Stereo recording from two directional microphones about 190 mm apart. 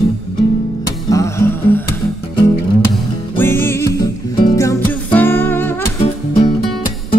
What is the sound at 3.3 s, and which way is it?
Music, 10° left (ahead or behind).